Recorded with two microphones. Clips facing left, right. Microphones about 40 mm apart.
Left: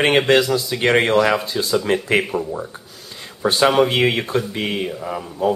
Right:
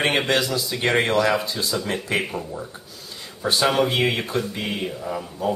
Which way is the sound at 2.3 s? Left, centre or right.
Centre.